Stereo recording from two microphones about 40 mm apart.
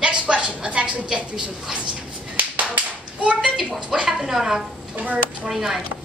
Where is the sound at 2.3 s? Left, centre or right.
Right.